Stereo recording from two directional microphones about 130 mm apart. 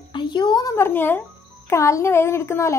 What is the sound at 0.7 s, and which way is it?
A woman's voice, 15° left (ahead or behind).